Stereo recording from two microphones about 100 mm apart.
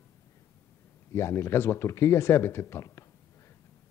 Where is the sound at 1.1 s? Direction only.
25° left (ahead or behind).